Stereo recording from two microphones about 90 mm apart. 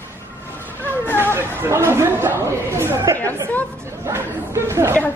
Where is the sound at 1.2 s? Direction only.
25° right (ahead or behind).